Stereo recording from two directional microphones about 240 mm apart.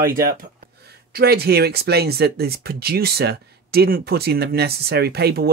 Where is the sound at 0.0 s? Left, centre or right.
Right.